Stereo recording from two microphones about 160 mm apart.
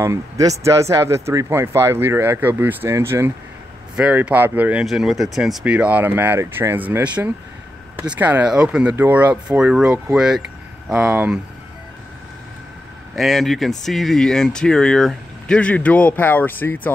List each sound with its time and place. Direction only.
0.0 s speech: 20° right (ahead or behind)
13.1 s speech: centre (ahead or behind)